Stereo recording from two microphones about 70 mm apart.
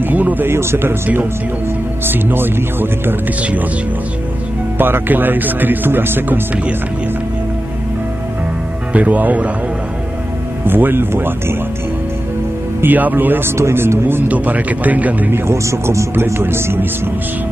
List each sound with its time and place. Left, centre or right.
0.1 s speech: right
4.7 s speech: right
8.9 s speech: right
10.7 s speech: right
12.8 s speech: right
13.6 s speech: right
15.4 s speech: right